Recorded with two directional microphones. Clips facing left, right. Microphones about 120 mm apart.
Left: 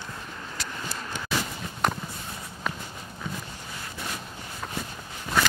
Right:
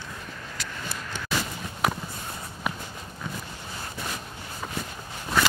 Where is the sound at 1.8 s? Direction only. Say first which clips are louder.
Even; 5° right (ahead or behind).